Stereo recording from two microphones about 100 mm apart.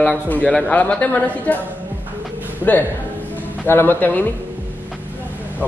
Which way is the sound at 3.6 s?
20° left (ahead or behind).